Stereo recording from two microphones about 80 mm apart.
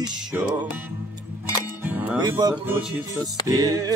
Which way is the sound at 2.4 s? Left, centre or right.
Right.